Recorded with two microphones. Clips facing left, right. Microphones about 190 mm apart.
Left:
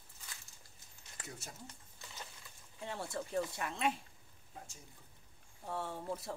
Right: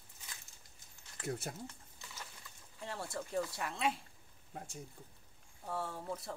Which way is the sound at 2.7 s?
Centre (ahead or behind).